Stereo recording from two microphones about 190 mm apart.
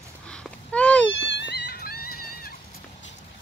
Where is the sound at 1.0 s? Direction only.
75° left (ahead or behind); by 2.5 s 50° left (ahead or behind).